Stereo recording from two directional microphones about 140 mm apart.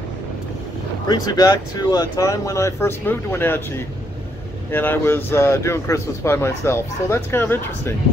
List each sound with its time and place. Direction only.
1.0 s speech: 30° left (ahead or behind)